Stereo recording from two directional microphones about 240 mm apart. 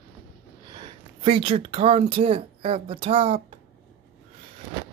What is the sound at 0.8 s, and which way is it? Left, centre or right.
Speech, right.